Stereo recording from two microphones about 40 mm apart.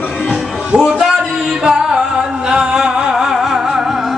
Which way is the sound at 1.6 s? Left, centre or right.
Centre.